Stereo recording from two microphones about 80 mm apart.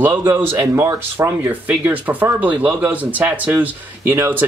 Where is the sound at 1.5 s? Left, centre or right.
Right.